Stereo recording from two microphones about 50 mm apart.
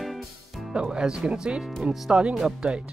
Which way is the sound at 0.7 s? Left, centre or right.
Centre.